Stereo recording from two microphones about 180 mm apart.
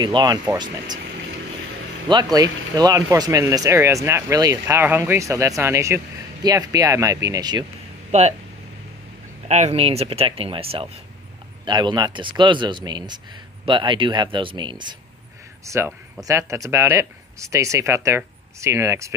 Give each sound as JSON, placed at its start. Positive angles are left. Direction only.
{"t": 0.0, "sound": "speech", "side_deg": -20}
{"t": 2.0, "sound": "speech", "side_deg": -25}
{"t": 8.1, "sound": "speech", "side_deg": -40}
{"t": 9.5, "sound": "speech", "side_deg": -40}